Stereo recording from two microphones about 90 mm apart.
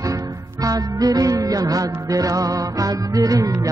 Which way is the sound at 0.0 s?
40° right (ahead or behind).